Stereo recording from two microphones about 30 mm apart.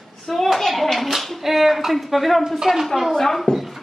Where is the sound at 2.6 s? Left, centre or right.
Centre.